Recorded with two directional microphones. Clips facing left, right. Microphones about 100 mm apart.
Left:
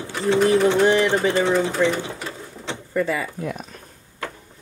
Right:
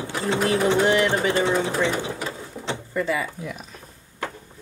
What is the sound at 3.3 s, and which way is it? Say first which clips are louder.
Speech: left 5 dB; 45° left (ahead or behind).